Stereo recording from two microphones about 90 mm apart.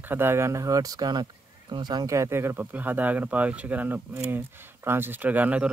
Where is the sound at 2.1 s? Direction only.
30° right (ahead or behind); by 5.7 s 15° right (ahead or behind).